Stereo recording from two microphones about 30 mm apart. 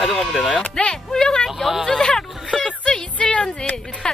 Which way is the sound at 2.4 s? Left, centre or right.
Left.